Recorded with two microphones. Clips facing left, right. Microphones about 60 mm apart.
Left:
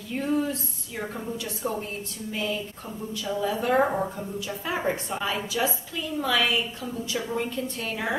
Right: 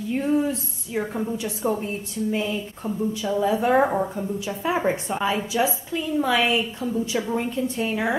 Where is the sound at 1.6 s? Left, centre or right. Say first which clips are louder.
Right 5 dB; right.